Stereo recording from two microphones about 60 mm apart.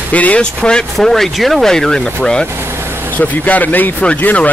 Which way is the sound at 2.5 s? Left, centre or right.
Right.